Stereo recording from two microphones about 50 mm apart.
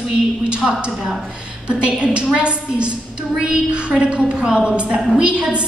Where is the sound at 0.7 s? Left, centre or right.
Centre.